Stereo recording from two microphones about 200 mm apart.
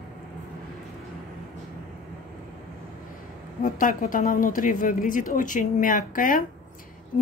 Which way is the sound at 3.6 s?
40° left (ahead or behind).